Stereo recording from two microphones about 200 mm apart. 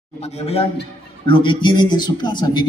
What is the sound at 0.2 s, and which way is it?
A man's voice, 30° left (ahead or behind).